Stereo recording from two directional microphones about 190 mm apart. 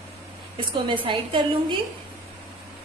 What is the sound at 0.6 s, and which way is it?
Speech, 25° right (ahead or behind).